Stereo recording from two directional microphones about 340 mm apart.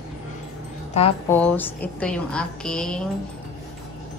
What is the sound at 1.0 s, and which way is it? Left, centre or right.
Speech, centre.